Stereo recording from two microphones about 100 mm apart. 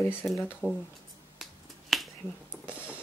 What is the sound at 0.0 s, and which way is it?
Speech, 20° left (ahead or behind).